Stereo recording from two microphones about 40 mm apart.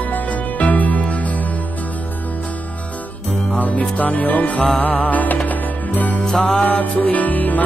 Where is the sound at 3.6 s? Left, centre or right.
Left.